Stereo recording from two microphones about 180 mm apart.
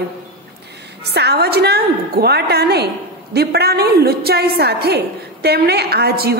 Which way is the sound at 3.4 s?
60° right (ahead or behind).